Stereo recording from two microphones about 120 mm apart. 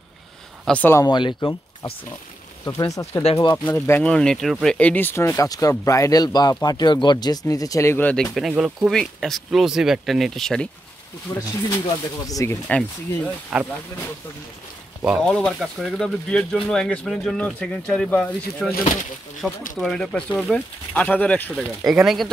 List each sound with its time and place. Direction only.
0.7 s speech: 10° left (ahead or behind)
1.0 s speech: 35° left (ahead or behind)
2.6 s speech: 25° left (ahead or behind)
4.1 s speech: 5° left (ahead or behind)
4.7 s speech: 15° left (ahead or behind)
8.4 s speech: 5° right (ahead or behind)
11.3 s speech: 30° left (ahead or behind)
13.5 s speech: 5° right (ahead or behind)
15.1 s speech: 5° left (ahead or behind)
21.5 s speech: 5° right (ahead or behind)